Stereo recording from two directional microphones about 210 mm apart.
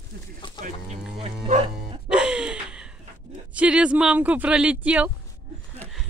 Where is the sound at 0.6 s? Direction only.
30° right (ahead or behind).